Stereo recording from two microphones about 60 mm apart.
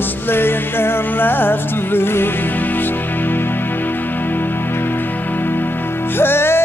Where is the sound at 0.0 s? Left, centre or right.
Left.